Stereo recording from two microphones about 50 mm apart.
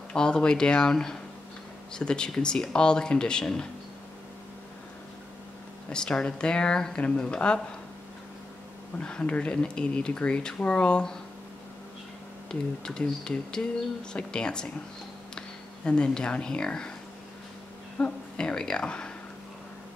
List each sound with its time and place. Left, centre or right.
0.1 s speech: centre
5.9 s speech: centre
9.0 s speech: left
12.4 s speech: centre
18.0 s speech: centre